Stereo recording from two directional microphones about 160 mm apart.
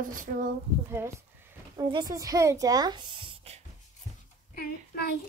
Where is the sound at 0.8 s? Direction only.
15° right (ahead or behind).